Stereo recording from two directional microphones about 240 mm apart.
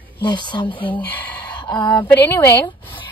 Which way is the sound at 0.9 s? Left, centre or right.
Centre.